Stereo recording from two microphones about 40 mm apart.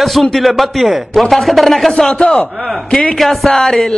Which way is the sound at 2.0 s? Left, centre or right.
Centre.